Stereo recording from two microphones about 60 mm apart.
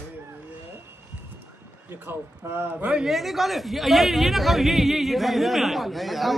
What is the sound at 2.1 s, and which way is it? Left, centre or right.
Speech, right.